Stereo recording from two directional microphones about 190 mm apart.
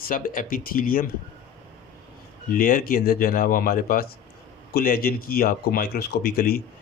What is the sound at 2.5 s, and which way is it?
Speech, 45° left (ahead or behind).